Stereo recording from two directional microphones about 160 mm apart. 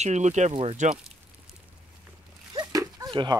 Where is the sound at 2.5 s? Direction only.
25° right (ahead or behind).